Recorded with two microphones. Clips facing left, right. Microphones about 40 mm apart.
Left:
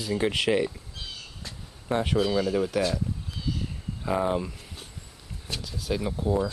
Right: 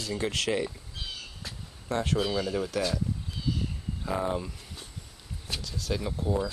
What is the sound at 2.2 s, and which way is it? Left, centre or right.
Speech, centre.